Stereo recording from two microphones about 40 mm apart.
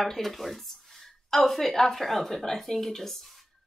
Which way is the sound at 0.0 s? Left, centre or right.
Centre.